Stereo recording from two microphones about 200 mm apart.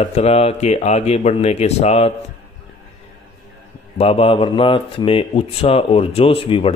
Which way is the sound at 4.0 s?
30° left (ahead or behind).